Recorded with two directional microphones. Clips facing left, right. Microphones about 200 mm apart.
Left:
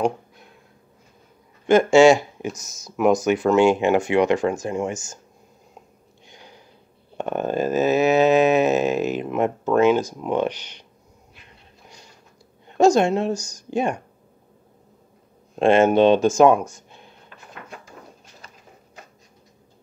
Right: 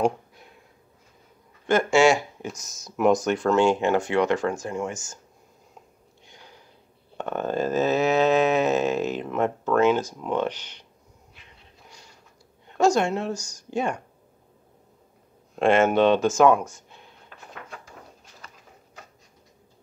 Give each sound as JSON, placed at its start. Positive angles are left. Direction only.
{"t": 1.7, "sound": "speech", "side_deg": 20}
{"t": 2.4, "sound": "a sound", "side_deg": 5}
{"t": 6.2, "sound": "sniff", "side_deg": 20}
{"t": 7.2, "sound": "a sound", "side_deg": 15}
{"t": 12.7, "sound": "speech", "side_deg": 20}
{"t": 15.5, "sound": "speech", "side_deg": 25}